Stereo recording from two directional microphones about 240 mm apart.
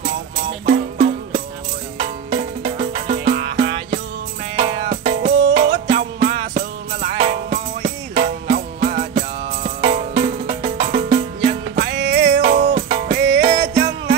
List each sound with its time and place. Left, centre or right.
0.7 s music: right
11.9 s music: right
12.5 s music: right